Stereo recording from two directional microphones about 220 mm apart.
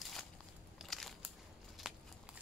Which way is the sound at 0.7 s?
Centre (ahead or behind).